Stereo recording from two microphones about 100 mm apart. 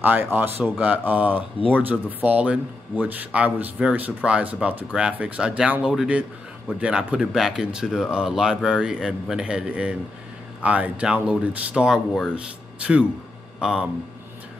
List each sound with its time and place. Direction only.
0.0 s speech: 20° right (ahead or behind)